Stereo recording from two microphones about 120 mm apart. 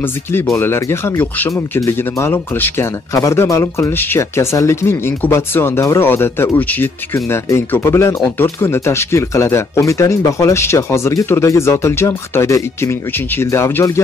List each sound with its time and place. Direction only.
0.6 s speech: 20° left (ahead or behind)